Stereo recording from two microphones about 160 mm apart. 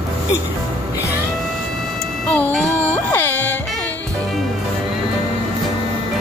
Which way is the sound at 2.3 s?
10° left (ahead or behind).